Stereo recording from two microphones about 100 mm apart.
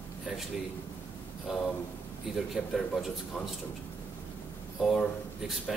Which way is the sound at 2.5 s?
5° right (ahead or behind).